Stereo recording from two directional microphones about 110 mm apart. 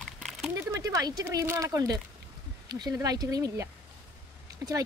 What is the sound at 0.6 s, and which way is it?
Speech, 30° right (ahead or behind).